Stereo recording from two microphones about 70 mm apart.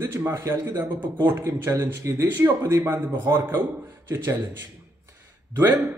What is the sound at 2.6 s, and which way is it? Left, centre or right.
A man's voice, right.